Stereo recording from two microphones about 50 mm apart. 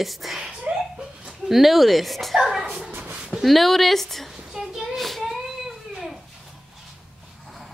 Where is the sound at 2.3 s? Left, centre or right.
Centre.